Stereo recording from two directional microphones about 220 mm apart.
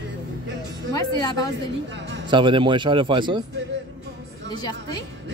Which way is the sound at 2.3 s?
20° right (ahead or behind).